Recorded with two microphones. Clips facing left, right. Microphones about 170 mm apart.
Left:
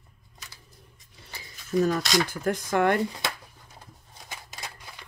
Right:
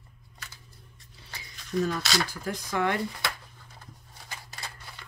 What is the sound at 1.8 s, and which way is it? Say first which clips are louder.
Speech: left 4 dB; 45° left (ahead or behind).